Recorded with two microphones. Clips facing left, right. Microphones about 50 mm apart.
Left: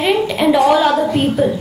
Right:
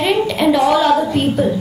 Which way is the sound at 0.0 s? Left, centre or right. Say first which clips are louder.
Even; centre.